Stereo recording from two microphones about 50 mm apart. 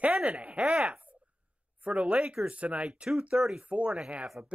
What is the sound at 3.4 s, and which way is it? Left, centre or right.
Speech, centre.